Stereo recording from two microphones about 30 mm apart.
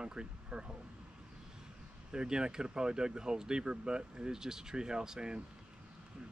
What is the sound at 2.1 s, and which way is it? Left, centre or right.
Speech, right.